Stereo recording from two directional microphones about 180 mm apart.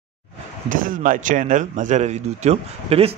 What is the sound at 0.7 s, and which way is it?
Speech, 50° right (ahead or behind).